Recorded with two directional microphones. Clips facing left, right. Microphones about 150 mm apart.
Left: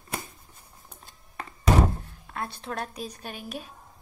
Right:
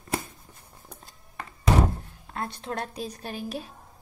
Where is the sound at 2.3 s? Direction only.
25° right (ahead or behind).